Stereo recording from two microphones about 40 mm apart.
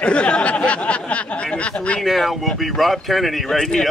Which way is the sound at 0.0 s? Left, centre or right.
Left.